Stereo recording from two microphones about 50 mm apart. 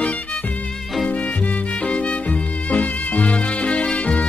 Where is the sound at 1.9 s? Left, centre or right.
Left.